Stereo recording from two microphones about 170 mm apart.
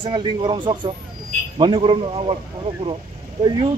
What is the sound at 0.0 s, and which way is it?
Speech, 25° right (ahead or behind).